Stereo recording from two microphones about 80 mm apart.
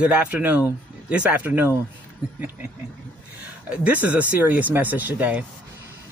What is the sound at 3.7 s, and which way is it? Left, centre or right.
Speech, centre.